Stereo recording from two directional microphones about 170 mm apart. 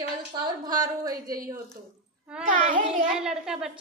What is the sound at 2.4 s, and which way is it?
Speech, 50° right (ahead or behind).